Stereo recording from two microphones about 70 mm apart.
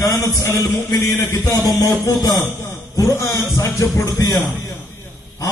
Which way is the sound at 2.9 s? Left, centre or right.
Left.